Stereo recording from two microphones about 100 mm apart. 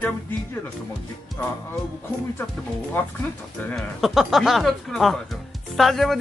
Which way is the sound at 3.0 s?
20° left (ahead or behind).